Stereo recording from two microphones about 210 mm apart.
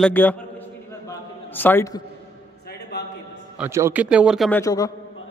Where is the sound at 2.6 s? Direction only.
50° left (ahead or behind).